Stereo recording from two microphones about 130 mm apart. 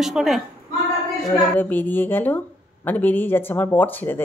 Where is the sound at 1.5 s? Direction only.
15° left (ahead or behind).